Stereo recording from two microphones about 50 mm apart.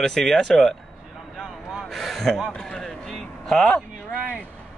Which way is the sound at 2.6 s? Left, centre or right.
Centre.